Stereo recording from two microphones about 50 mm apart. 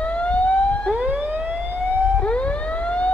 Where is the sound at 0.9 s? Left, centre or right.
Right.